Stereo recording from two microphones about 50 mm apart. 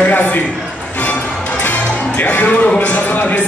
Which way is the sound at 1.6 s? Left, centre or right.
Left.